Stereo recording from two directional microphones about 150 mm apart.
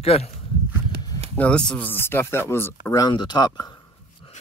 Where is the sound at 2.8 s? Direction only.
25° left (ahead or behind).